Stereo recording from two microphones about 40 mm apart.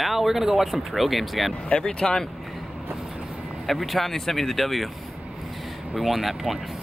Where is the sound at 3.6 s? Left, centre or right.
Centre.